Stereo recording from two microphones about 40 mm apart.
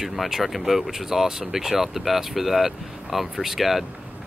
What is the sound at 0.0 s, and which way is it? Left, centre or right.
Speech, centre.